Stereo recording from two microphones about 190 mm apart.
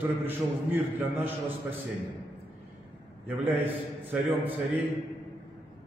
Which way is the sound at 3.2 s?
10° right (ahead or behind).